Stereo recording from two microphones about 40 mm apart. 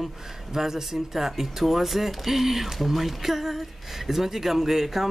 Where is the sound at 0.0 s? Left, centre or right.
Centre.